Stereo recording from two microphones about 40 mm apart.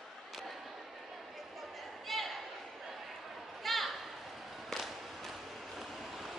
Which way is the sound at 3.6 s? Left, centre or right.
Centre.